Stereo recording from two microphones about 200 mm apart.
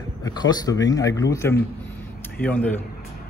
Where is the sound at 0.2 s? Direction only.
20° left (ahead or behind).